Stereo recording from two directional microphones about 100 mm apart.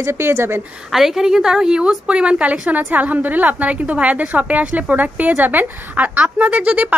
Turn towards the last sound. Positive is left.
turn(degrees=-15)  # may be behind; listen again after turning